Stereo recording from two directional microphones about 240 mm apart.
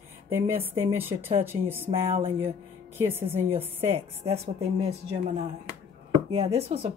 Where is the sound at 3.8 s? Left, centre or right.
Right.